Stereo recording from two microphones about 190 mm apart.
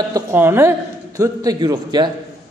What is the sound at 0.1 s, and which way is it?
A man's voice, 15° right (ahead or behind).